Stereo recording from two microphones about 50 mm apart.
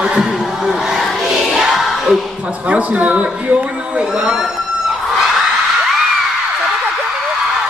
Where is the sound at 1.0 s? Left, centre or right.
Centre.